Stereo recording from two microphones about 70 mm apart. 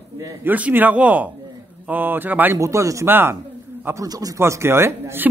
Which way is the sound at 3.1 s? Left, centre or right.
Right.